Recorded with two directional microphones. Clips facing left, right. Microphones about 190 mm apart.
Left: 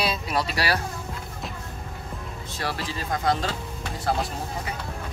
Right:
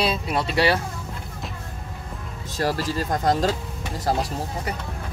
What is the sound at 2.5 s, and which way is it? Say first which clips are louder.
Speech: right 7 dB; 40° right (ahead or behind).